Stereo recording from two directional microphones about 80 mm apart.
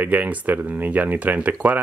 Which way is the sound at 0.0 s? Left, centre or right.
Right.